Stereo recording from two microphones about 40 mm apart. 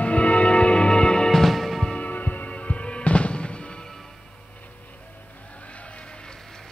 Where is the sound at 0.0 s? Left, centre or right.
Left.